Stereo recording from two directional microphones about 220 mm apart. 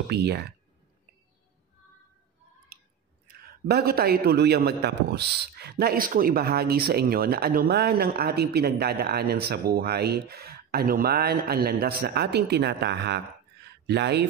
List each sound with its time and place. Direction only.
0.1 s a man's voice: 50° right (ahead or behind)
3.4 s a man's voice: 45° right (ahead or behind)